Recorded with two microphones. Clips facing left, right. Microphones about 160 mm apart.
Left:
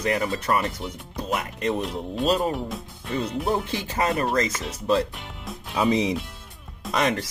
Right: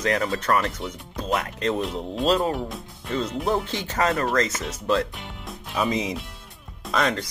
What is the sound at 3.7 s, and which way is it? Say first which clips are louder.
Speech: left 1 dB; 10° left (ahead or behind).